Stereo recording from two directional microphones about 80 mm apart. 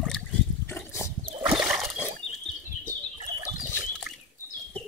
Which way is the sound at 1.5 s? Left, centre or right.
Centre.